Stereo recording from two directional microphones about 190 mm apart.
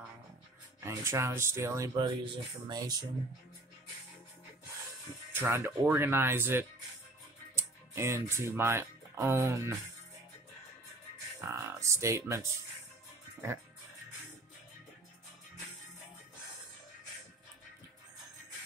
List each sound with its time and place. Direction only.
0.8 s speech: 15° right (ahead or behind)
5.3 s speech: 10° right (ahead or behind)
11.4 s speech: 15° right (ahead or behind)